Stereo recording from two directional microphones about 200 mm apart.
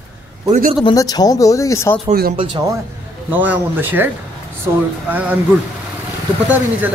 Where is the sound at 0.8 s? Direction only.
20° left (ahead or behind).